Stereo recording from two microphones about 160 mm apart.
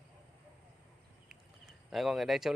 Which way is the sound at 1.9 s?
Centre (ahead or behind).